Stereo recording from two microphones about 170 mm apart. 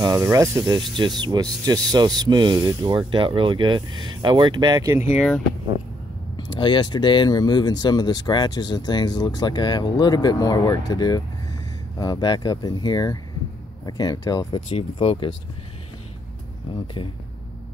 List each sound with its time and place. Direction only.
0.0 s speech: 20° right (ahead or behind)
5.1 s speech: 5° left (ahead or behind)
6.3 s speech: 25° left (ahead or behind)
16.8 s speech: 30° left (ahead or behind)